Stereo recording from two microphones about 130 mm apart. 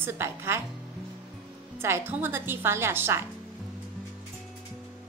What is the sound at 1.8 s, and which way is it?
A woman's voice, 20° right (ahead or behind).